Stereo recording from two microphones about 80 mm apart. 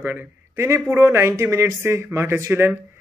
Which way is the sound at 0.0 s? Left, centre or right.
Right.